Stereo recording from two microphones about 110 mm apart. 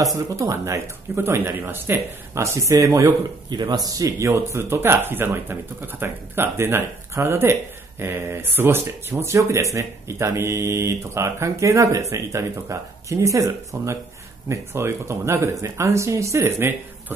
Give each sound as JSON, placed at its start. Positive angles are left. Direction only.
{"t": 0.0, "sound": "speech", "side_deg": -30}